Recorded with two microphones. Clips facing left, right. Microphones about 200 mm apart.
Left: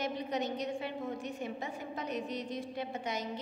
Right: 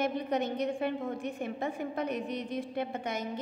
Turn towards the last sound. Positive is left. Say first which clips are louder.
# right 3 dB
turn(degrees=-55)  # may be behind; listen again after turning